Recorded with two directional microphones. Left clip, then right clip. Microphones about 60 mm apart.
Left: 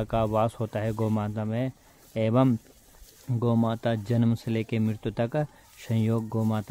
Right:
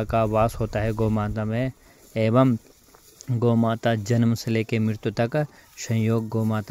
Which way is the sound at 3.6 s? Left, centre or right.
Right.